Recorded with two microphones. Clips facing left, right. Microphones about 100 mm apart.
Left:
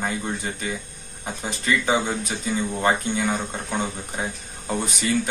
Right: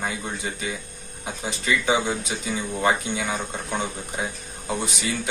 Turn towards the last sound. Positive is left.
turn(degrees=-5)  # may be behind; listen again after turning